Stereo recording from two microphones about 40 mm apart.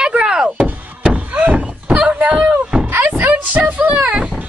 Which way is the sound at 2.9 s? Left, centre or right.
Right.